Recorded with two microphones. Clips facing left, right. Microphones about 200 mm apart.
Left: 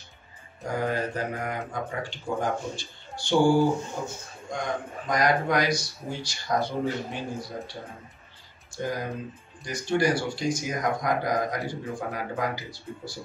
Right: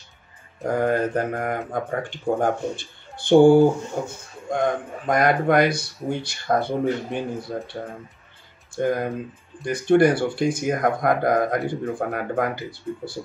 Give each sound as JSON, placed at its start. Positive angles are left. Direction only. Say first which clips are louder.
{"t": 0.7, "sound": "speech", "louder": "right 7 dB", "side_deg": -55}
{"t": 8.7, "sound": "speech", "louder": "right 8 dB", "side_deg": -55}